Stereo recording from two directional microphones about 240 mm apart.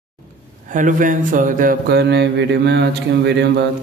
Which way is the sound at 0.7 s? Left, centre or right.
Right.